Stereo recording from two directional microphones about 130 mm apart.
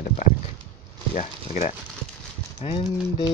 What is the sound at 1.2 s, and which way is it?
Speech, 60° left (ahead or behind).